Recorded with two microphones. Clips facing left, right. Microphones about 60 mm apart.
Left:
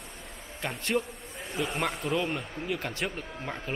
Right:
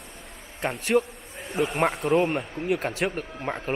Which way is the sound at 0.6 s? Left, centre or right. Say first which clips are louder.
Right 6 dB; right.